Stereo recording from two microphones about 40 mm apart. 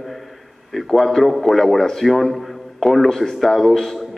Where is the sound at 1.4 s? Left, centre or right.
Centre.